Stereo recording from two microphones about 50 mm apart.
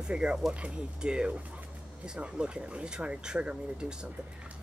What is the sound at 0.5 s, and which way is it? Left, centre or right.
Speech, right.